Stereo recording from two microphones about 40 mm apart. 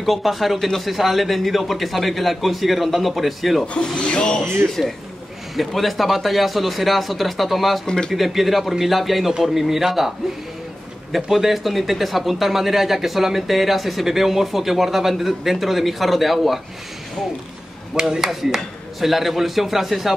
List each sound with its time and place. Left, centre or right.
0.0 s speech: centre
3.8 s speech: left
4.6 s speech: centre
7.8 s speech: centre
8.1 s a man's voice: centre
17.9 s speech: centre